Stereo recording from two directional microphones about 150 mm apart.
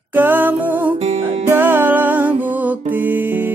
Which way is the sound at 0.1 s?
10° right (ahead or behind).